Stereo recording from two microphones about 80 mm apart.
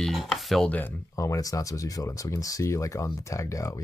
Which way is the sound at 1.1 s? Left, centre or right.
Left.